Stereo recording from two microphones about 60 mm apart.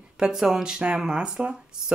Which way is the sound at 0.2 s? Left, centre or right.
Centre.